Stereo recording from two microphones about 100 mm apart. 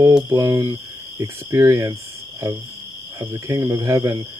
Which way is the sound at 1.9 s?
30° right (ahead or behind).